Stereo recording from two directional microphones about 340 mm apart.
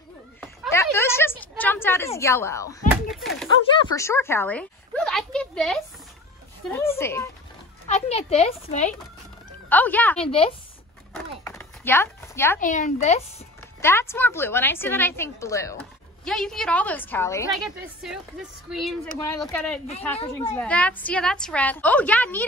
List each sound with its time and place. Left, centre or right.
0.4 s a sound: centre
2.0 s a woman's voice: centre
6.9 s speech: centre
7.9 s speech: centre
9.7 s a woman's voice: centre
10.2 s speech: centre
11.1 s chopping: centre
12.5 s speech: left
13.7 s a woman's voice: centre